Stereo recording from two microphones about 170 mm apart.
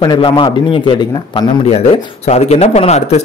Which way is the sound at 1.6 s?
40° left (ahead or behind).